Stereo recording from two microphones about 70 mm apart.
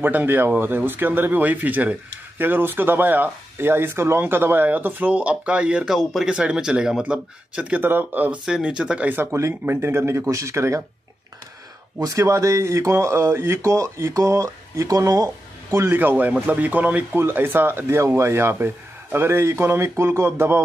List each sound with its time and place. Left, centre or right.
0.0 s speech: right
5.9 s speech: centre
7.8 s speech: right
8.5 s speech: centre
9.1 s speech: right
12.0 s speech: right
15.9 s speech: right